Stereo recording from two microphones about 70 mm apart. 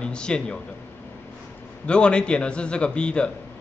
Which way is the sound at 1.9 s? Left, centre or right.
Centre.